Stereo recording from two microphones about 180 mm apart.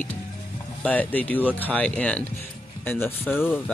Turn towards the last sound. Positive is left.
turn(degrees=10)  # may be behind; listen again after turning